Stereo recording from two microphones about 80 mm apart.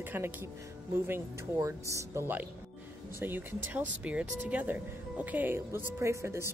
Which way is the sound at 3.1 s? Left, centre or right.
Right.